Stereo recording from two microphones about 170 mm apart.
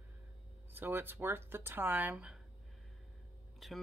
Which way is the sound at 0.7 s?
10° right (ahead or behind).